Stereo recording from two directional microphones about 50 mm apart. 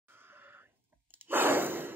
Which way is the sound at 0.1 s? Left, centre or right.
Right.